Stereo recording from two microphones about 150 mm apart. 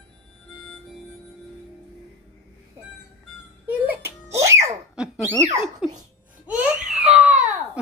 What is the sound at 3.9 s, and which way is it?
Music, 15° right (ahead or behind).